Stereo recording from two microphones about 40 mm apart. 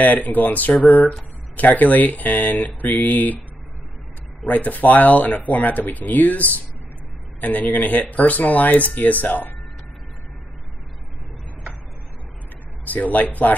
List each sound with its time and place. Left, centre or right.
0.0 s speech: left
4.5 s speech: left
12.8 s speech: left